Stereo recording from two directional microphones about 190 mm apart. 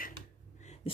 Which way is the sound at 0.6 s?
35° left (ahead or behind).